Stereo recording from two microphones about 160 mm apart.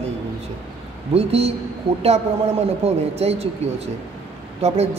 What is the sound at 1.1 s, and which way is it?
Speech, 40° right (ahead or behind).